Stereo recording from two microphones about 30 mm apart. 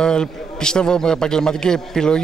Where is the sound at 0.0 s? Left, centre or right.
Left.